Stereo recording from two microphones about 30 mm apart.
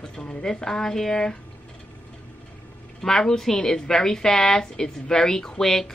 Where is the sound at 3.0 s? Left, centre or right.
Centre.